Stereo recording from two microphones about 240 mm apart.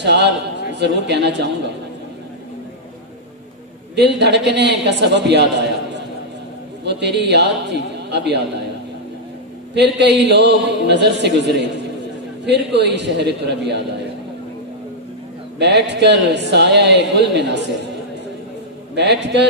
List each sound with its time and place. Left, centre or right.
0.0 s a man's voice: right
3.9 s a man's voice: right
9.8 s a man's voice: right
15.6 s a man's voice: right
18.9 s a man's voice: right